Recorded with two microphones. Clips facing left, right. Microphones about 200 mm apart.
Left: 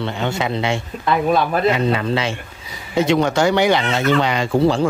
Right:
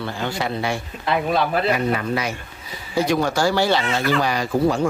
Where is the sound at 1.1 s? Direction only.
50° left (ahead or behind).